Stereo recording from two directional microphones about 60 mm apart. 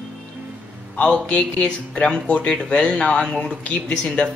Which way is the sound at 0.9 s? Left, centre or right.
Centre.